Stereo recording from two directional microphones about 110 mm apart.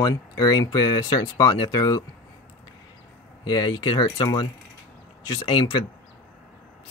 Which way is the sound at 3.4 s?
40° left (ahead or behind).